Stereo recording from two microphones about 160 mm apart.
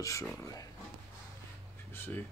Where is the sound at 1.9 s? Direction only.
10° left (ahead or behind).